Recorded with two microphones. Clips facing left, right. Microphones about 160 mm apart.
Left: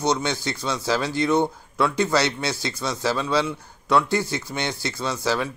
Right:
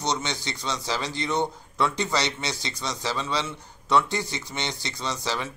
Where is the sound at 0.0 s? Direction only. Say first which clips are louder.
Left 5 dB; 5° left (ahead or behind).